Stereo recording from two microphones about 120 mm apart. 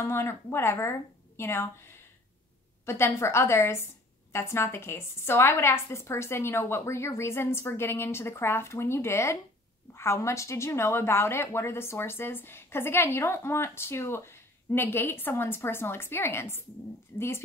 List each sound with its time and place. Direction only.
0.0 s speech: 20° left (ahead or behind)
2.8 s speech: 20° left (ahead or behind)